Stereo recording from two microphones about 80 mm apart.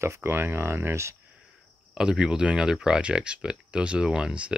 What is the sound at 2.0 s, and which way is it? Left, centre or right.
Speech, centre.